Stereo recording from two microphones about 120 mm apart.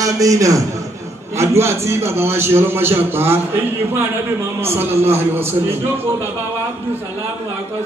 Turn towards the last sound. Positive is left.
turn(degrees=-20)  # may be behind; listen again after turning